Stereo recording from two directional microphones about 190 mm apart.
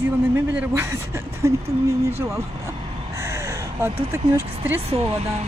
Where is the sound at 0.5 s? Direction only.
10° right (ahead or behind).